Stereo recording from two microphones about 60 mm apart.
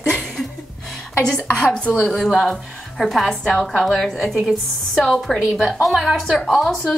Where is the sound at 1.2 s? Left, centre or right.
Centre.